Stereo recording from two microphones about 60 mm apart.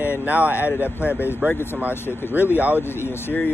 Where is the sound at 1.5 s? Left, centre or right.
Left.